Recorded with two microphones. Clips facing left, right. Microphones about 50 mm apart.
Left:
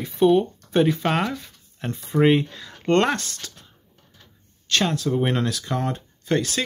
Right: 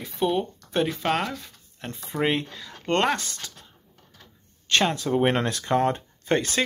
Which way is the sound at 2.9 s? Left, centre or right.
Centre.